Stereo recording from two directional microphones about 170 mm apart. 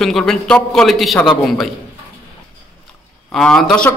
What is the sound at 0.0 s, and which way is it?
A man's voice, centre (ahead or behind).